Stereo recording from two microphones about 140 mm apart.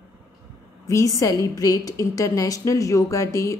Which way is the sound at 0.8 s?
25° left (ahead or behind).